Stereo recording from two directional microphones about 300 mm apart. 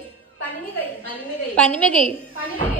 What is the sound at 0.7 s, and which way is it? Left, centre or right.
A woman's voice, centre.